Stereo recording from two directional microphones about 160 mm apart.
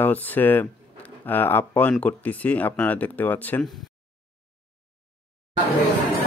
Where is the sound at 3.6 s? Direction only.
Centre (ahead or behind).